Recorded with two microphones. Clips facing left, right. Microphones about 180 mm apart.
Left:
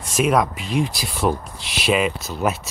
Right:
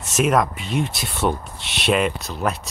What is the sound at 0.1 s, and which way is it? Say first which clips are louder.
Speech: even; centre (ahead or behind).